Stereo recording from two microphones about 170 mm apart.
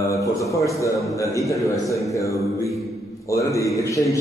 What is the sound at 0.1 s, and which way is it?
A man's voice, 20° left (ahead or behind).